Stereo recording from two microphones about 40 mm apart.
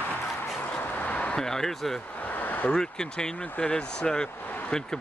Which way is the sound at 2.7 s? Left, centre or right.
Centre.